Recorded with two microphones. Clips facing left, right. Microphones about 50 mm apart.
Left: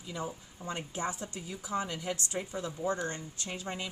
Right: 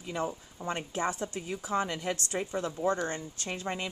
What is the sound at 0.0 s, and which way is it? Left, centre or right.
A woman's voice, right.